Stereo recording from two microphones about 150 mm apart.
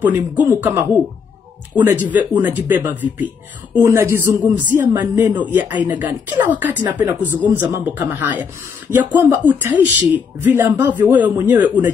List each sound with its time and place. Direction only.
0.5 s speech: 15° right (ahead or behind)
2.0 s speech: 10° right (ahead or behind)